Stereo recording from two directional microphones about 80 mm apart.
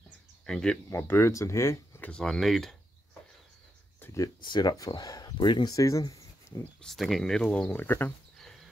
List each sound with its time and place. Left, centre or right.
0.5 s speech: centre
0.8 s speech: left
2.0 s a sound: centre
2.2 s speech: centre
4.0 s a sound: left
4.4 s speech: left
5.4 s speech: left
5.7 s speech: left
6.8 s speech: centre
7.8 s speech: left
8.4 s a sound: centre